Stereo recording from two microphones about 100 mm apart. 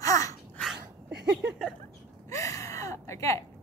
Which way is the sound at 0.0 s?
35° left (ahead or behind).